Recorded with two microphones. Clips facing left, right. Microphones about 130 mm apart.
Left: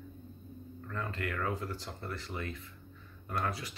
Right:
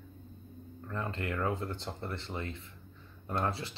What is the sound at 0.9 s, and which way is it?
Speech, 25° right (ahead or behind).